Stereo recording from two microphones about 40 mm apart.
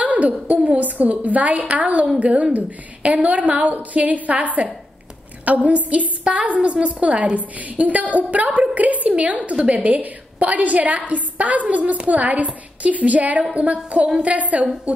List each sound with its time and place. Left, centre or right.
0.0 s a woman's voice: right